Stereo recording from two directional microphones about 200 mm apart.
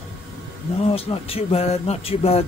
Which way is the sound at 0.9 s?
30° left (ahead or behind).